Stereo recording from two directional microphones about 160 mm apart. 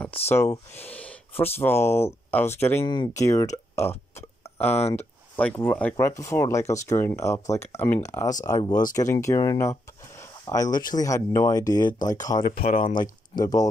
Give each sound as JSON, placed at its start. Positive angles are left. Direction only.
{"t": 0.3, "sound": "speech", "side_deg": 15}
{"t": 4.7, "sound": "speech", "side_deg": 40}
{"t": 5.3, "sound": "speech", "side_deg": 10}
{"t": 12.6, "sound": "speech", "side_deg": 35}
{"t": 13.3, "sound": "speech", "side_deg": 25}